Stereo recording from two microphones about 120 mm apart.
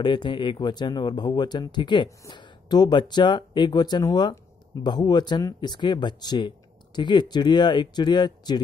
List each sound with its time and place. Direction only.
0.0 s speech: 40° left (ahead or behind)